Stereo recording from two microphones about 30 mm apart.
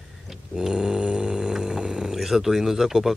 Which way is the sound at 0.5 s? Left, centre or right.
Right.